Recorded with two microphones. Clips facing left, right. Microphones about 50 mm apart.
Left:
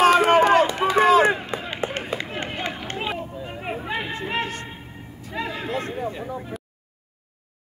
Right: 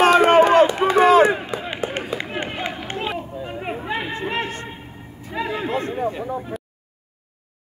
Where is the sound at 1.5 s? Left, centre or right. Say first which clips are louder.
Right 2 dB; left.